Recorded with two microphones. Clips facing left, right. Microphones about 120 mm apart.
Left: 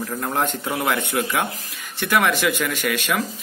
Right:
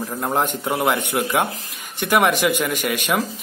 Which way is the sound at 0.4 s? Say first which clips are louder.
Right 2 dB; 15° right (ahead or behind).